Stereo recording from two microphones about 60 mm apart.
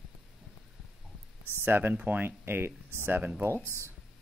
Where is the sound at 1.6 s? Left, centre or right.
Right.